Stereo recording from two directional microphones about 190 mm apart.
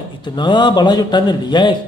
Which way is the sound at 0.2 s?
25° left (ahead or behind).